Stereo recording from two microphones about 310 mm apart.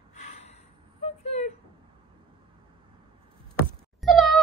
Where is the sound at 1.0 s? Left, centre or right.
Left.